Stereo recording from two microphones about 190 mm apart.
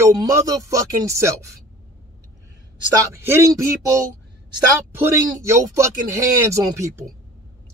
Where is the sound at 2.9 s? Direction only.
15° right (ahead or behind).